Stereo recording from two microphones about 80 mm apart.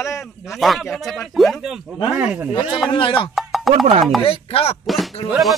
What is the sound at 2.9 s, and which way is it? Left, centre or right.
Speech, left.